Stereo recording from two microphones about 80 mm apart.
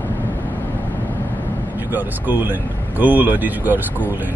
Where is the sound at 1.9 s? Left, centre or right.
Right.